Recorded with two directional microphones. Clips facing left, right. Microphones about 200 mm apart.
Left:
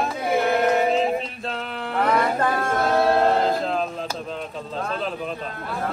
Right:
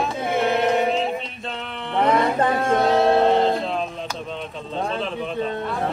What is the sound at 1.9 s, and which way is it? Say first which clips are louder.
Mantra: right 2 dB; 25° right (ahead or behind).